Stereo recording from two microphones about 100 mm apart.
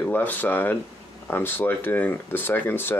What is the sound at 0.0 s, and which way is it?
Speech, 15° left (ahead or behind).